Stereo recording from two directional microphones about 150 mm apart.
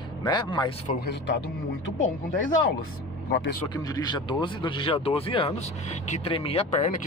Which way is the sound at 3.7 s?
25° left (ahead or behind).